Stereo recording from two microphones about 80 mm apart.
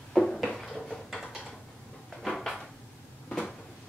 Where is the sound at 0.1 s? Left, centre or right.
Centre.